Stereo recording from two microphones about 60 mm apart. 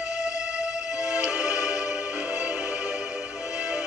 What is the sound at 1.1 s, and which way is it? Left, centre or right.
Music, right.